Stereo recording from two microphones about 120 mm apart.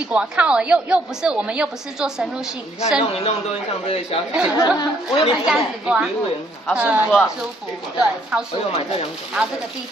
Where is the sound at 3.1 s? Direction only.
55° left (ahead or behind).